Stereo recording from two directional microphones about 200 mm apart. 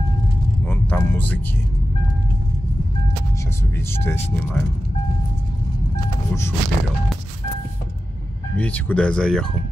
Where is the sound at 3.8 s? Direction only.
10° left (ahead or behind).